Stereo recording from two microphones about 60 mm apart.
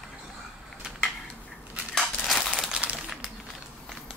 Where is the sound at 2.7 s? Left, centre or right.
Right.